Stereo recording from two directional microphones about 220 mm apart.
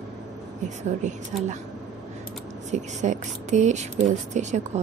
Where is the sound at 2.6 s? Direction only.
35° right (ahead or behind).